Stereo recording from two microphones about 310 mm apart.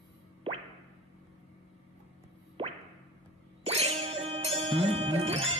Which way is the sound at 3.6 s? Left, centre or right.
Centre.